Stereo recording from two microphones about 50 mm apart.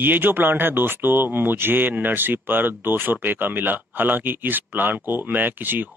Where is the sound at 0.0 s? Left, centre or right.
Right.